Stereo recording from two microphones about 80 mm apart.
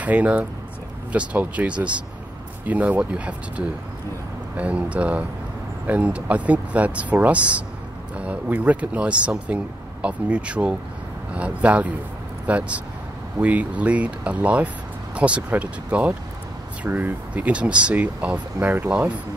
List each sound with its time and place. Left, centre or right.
0.0 s speech: centre